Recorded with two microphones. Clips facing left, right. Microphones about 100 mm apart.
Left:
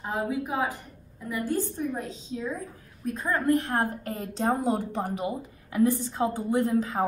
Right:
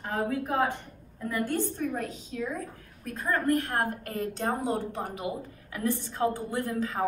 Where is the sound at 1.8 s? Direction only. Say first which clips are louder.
Even; 20° left (ahead or behind).